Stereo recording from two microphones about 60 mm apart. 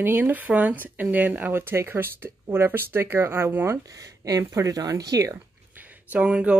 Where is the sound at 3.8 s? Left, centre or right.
Right.